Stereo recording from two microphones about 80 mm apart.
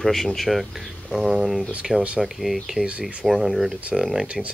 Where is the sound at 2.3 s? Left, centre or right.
Centre.